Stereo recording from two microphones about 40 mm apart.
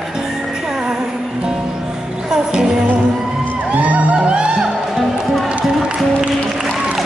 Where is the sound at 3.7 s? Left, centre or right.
Right.